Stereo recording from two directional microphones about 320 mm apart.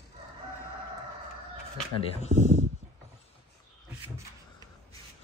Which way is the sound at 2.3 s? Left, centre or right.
Centre.